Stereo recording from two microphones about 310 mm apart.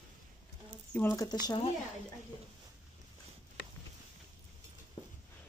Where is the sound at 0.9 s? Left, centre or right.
Centre.